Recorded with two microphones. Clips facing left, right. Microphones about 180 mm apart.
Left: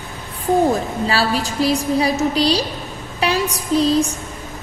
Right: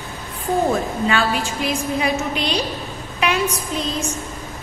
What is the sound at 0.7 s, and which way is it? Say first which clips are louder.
A woman's voice: even; 35° left (ahead or behind).